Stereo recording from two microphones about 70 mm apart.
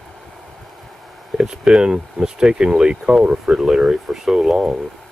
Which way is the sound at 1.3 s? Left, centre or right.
Centre.